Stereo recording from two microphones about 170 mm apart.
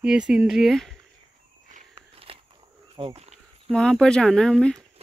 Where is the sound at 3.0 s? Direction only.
30° right (ahead or behind).